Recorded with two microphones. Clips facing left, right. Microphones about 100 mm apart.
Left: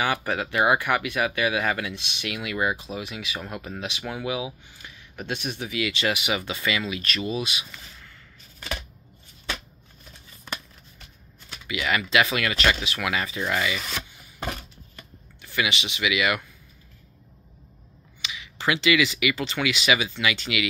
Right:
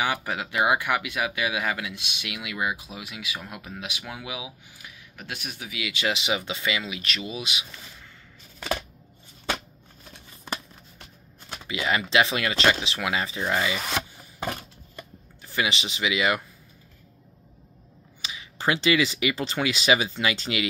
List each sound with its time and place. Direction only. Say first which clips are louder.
0.0 s speech: left 2 dB; 10° right (ahead or behind)
11.6 s speech: even; 30° right (ahead or behind)
15.4 s speech: even; 30° right (ahead or behind)
18.2 s speech: even; 35° right (ahead or behind)